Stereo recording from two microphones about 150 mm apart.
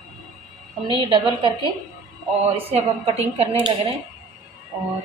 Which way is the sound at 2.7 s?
40° right (ahead or behind).